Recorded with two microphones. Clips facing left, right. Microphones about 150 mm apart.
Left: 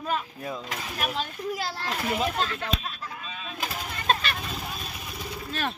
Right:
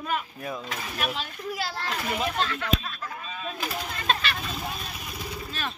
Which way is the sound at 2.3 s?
35° left (ahead or behind).